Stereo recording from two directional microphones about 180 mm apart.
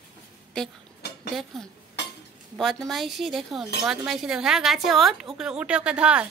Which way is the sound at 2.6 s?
Centre (ahead or behind).